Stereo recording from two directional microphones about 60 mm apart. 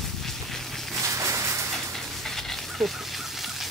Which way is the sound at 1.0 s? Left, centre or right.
Right.